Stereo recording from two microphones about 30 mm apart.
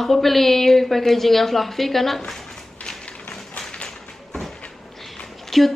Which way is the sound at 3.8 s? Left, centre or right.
Centre.